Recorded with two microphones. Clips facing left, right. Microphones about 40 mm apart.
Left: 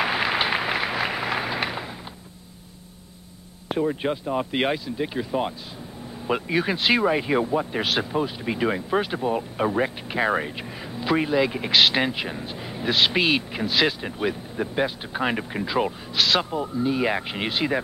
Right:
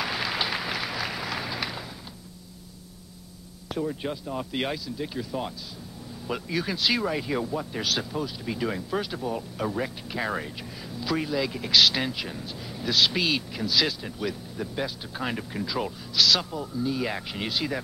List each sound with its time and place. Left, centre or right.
0.0 s applause: left
3.6 s speech: left